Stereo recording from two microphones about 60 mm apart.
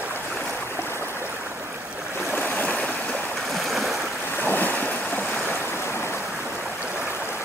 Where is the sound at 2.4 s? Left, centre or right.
Left.